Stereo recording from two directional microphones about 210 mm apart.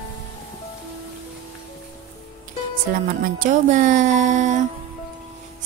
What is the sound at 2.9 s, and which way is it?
Speech, 40° right (ahead or behind).